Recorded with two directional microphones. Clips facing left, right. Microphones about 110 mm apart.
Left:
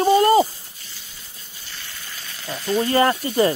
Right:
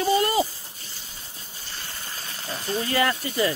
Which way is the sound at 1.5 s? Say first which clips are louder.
Right 1 dB; 40° right (ahead or behind).